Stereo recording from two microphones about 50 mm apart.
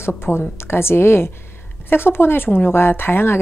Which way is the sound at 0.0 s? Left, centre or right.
Left.